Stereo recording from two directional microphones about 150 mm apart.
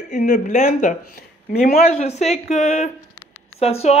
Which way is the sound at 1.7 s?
45° left (ahead or behind).